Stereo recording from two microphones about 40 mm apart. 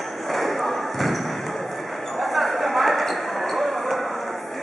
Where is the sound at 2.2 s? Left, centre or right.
Centre.